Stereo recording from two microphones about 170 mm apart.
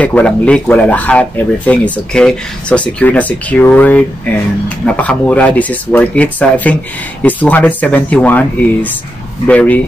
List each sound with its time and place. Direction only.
0.0 s speech: 5° left (ahead or behind)